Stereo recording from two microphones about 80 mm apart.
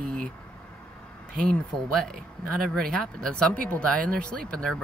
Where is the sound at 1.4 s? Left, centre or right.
Centre.